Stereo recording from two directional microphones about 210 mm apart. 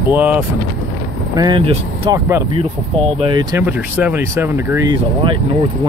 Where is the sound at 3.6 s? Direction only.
10° right (ahead or behind).